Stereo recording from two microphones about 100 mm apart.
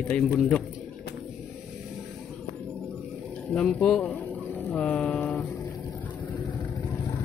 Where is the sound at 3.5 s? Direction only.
10° left (ahead or behind).